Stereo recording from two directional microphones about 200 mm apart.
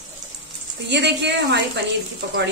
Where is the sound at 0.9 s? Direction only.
60° right (ahead or behind).